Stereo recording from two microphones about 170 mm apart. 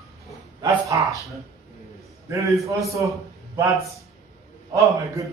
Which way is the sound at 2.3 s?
20° right (ahead or behind).